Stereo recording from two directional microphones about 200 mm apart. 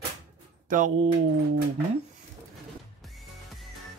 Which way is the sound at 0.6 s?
40° right (ahead or behind).